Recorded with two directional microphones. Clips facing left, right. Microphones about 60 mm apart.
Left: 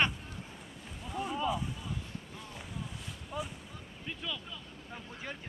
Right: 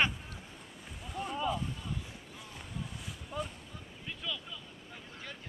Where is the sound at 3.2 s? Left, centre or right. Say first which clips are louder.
Even; centre.